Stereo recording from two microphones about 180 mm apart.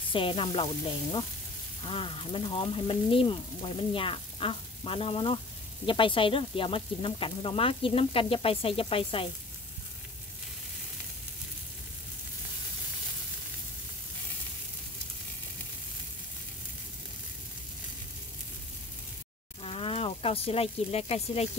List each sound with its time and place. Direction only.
0.1 s frying: 30° left (ahead or behind)
19.6 s speech: 30° left (ahead or behind)